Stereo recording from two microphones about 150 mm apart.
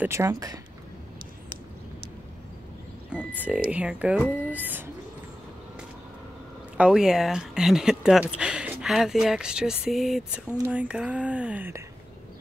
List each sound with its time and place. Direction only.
0.0 s speech: 20° right (ahead or behind)
3.2 s speech: 10° left (ahead or behind)
3.7 s speech: 10° right (ahead or behind)
4.2 s speech: 10° left (ahead or behind)
4.5 s speech: 10° right (ahead or behind)
6.8 s speech: 5° right (ahead or behind)